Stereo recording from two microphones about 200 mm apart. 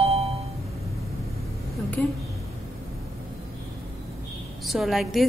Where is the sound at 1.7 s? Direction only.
5° left (ahead or behind).